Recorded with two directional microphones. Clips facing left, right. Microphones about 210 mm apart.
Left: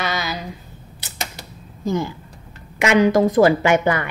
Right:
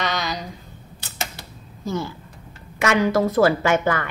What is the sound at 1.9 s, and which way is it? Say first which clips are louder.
A woman's voice: left 4 dB; 15° left (ahead or behind).